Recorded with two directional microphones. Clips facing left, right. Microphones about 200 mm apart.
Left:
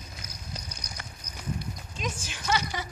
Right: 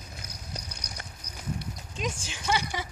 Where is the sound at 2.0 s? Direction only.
15° right (ahead or behind).